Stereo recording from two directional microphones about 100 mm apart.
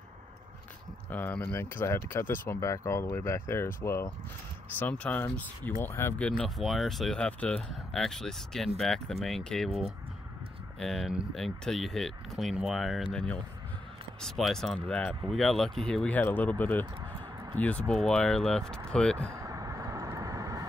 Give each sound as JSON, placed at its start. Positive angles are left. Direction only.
{"t": 1.1, "sound": "speech", "side_deg": 15}
{"t": 4.7, "sound": "speech", "side_deg": 15}
{"t": 6.1, "sound": "speech", "side_deg": 10}
{"t": 10.8, "sound": "speech", "side_deg": 5}
{"t": 19.3, "sound": "vehicle", "side_deg": -35}